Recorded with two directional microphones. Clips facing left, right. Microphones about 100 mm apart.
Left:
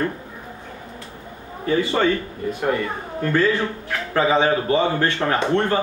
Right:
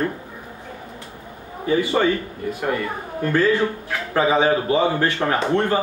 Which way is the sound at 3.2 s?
15° right (ahead or behind).